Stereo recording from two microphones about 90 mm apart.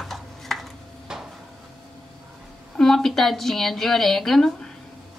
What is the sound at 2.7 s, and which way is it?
A woman's voice, 5° left (ahead or behind).